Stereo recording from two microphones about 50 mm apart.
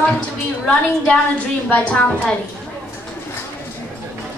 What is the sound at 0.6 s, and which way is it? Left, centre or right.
A woman's voice, left.